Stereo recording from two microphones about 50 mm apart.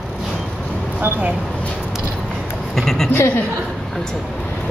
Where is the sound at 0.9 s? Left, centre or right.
Right.